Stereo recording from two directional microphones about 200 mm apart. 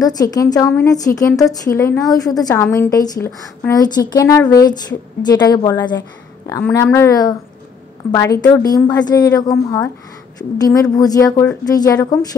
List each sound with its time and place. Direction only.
0.0 s a woman's voice: 20° left (ahead or behind)
10.6 s a woman's voice: 20° left (ahead or behind)